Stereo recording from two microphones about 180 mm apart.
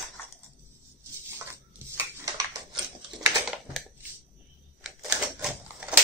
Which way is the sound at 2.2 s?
20° right (ahead or behind).